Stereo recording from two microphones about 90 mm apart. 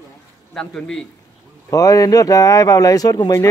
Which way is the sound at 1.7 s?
40° left (ahead or behind).